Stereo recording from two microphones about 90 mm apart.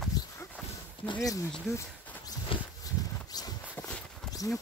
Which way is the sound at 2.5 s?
80° left.